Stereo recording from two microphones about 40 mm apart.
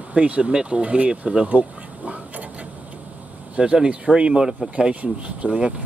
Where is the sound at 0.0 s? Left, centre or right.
Right.